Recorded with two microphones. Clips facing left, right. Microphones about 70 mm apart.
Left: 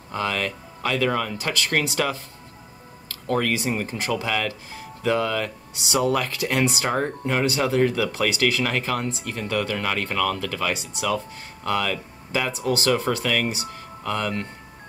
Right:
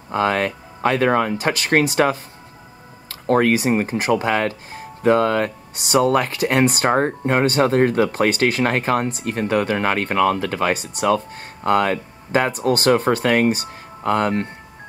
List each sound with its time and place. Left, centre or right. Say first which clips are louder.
0.1 s speech: right 7 dB; right
3.3 s speech: right 7 dB; right